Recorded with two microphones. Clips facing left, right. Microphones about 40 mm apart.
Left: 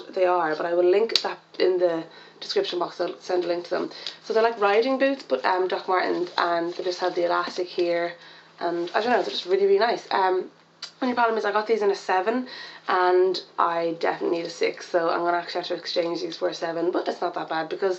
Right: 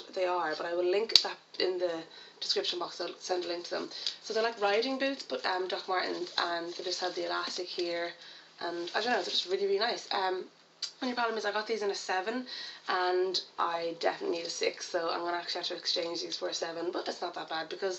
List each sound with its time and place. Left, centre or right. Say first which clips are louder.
0.1 s speech: left 9 dB; left
12.2 s speech: left 10 dB; left
15.1 s speech: left 10 dB; left